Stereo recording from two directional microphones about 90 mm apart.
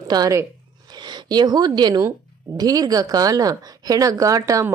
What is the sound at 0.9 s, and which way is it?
A woman's voice, 55° right (ahead or behind).